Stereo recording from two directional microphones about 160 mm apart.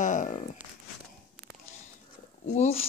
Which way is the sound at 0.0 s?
50° left (ahead or behind).